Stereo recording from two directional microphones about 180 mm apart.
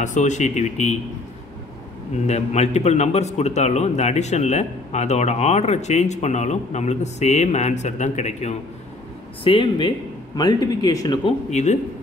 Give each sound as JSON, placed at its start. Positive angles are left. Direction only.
{"t": 0.0, "sound": "a man's voice", "side_deg": 40}
{"t": 2.2, "sound": "a man's voice", "side_deg": 40}
{"t": 11.5, "sound": "a man's voice", "side_deg": 40}